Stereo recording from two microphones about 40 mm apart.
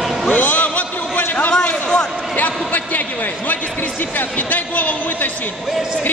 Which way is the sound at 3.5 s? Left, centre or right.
Left.